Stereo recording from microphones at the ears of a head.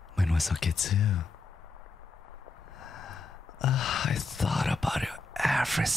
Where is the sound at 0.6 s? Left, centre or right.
Left.